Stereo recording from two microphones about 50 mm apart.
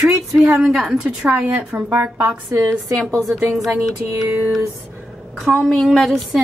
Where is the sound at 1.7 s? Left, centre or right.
Right.